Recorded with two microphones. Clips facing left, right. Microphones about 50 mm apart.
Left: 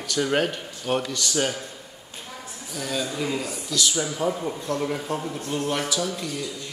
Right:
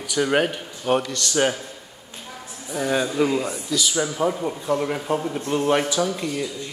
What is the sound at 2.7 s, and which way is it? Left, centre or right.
Speech, right.